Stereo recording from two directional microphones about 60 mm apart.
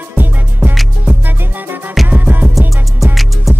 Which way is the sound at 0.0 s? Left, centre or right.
Right.